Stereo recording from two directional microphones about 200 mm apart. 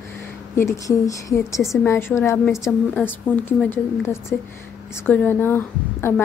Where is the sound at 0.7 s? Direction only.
15° left (ahead or behind).